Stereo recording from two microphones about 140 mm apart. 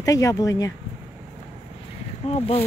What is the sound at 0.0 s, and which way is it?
Speech, 25° left (ahead or behind).